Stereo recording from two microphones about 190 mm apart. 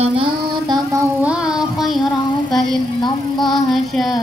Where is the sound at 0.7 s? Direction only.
15° right (ahead or behind).